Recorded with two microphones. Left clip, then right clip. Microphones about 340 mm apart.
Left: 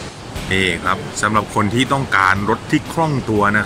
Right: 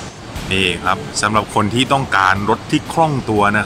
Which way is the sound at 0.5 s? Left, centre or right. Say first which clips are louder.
Right 1 dB; centre.